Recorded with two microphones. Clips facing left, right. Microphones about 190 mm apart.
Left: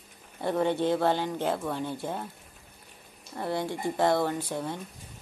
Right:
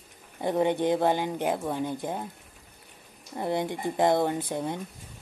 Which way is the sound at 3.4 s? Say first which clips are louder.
Right 2 dB; 20° right (ahead or behind).